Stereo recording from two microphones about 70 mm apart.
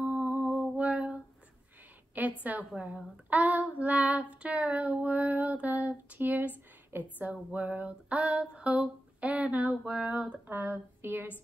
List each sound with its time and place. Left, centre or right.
0.0 s music: right
2.2 s a sound: right
2.7 s child singing: centre